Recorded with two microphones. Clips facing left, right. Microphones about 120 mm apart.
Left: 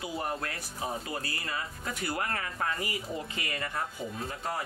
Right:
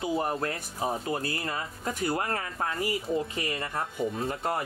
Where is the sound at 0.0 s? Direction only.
35° right (ahead or behind).